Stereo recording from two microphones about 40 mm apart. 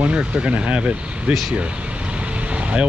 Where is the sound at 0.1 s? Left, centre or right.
Right.